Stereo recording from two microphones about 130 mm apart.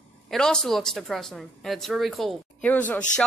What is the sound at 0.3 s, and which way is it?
Speech, 5° left (ahead or behind).